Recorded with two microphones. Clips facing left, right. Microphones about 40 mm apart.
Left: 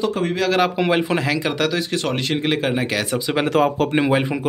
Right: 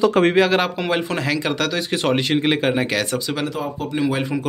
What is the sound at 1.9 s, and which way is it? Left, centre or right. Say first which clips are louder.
Speech: right 3 dB; centre.